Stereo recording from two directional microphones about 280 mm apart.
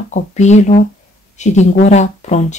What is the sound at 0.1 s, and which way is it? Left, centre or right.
Speech, left.